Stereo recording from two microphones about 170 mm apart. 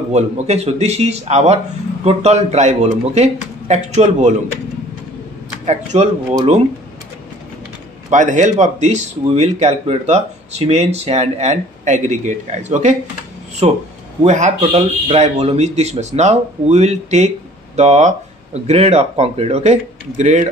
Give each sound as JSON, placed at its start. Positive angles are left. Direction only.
{"t": 0.1, "sound": "speech", "side_deg": -40}
{"t": 5.7, "sound": "speech", "side_deg": -45}
{"t": 8.1, "sound": "speech", "side_deg": -45}